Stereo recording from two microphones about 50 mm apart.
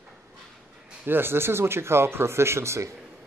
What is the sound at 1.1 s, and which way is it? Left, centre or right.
Speech, right.